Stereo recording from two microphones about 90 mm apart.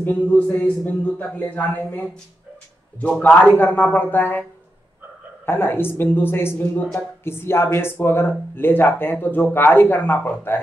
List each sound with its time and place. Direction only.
0.0 s speech: 20° left (ahead or behind)